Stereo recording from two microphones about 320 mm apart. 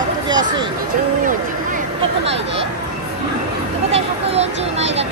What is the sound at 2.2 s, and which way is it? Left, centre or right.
Speech, right.